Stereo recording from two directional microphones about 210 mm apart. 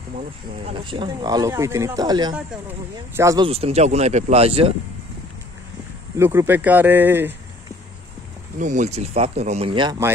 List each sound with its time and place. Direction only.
0.7 s speech: 25° right (ahead or behind)
3.4 s speech: 30° right (ahead or behind)
6.1 s speech: 10° right (ahead or behind)
8.5 s speech: 35° right (ahead or behind); by 10.1 s 15° right (ahead or behind)